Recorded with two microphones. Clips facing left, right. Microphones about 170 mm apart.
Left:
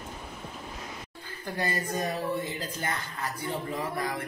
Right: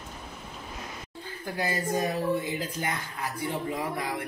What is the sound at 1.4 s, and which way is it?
Speech, 10° right (ahead or behind).